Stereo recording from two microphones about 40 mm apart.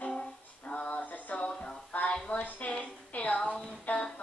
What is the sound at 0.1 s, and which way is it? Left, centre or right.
Music, left.